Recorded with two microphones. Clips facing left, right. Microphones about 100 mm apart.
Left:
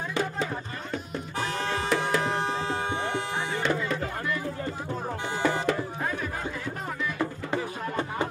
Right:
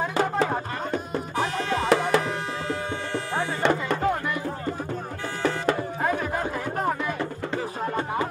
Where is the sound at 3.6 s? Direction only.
60° right (ahead or behind).